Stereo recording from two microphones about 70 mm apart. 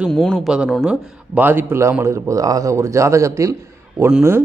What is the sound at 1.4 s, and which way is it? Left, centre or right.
Speech, right.